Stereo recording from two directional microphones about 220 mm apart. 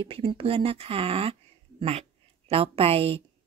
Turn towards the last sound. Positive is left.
turn(degrees=-25)  # may be behind; listen again after turning